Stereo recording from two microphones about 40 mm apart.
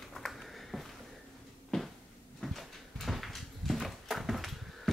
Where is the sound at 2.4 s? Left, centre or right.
Centre.